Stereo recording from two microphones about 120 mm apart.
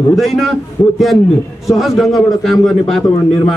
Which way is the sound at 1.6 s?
Centre (ahead or behind).